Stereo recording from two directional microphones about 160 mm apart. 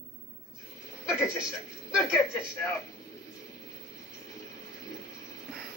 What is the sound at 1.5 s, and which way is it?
A man's voice, 15° left (ahead or behind).